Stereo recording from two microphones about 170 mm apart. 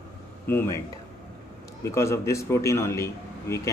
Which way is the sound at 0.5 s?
15° left (ahead or behind).